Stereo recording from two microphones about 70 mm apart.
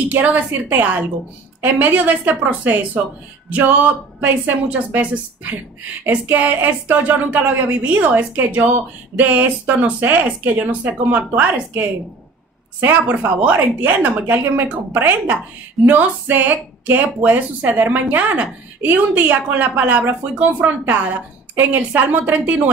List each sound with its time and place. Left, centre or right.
0.1 s speech: right